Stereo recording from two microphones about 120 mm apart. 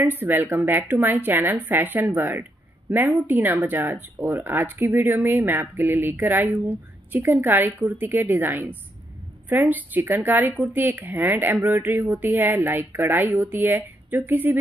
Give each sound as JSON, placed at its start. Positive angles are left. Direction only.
{"t": 0.0, "sound": "a woman's voice", "side_deg": -15}